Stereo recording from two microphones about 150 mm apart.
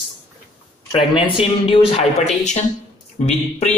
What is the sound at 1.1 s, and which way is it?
Speech, 35° left (ahead or behind).